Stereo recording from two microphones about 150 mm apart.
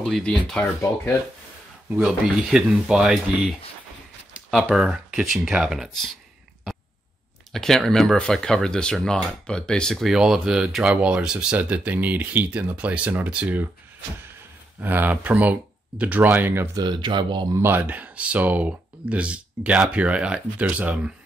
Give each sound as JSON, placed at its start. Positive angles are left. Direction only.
{"t": 0.0, "sound": "speech", "side_deg": 5}
{"t": 2.0, "sound": "speech", "side_deg": -5}
{"t": 7.5, "sound": "speech", "side_deg": 0}
{"t": 14.8, "sound": "speech", "side_deg": -10}
{"t": 16.7, "sound": "speech", "side_deg": -30}
{"t": 17.6, "sound": "speech", "side_deg": -15}